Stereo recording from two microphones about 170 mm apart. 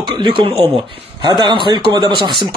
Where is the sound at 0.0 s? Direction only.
25° right (ahead or behind).